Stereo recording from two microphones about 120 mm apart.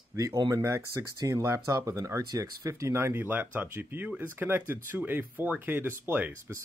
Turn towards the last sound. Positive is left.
turn(degrees=-15)  # may be behind; listen again after turning